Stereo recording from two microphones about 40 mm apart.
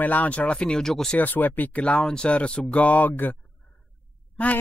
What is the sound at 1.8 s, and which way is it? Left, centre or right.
Speech, left.